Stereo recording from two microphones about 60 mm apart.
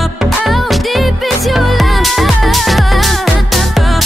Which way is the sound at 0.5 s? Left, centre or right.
Centre.